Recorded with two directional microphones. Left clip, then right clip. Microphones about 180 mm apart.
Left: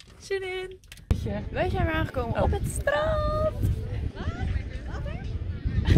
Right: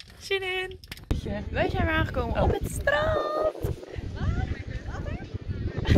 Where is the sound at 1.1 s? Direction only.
55° left (ahead or behind).